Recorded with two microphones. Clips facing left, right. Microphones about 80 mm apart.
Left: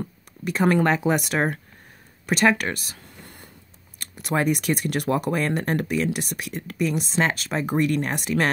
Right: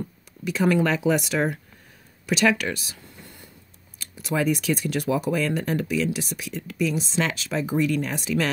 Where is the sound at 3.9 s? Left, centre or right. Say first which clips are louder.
Left 1 dB; left.